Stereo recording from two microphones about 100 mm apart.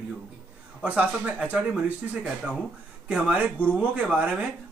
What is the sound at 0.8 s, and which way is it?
Speech, 10° right (ahead or behind).